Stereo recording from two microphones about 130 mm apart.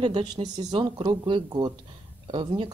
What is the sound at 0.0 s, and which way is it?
Speech, 35° right (ahead or behind).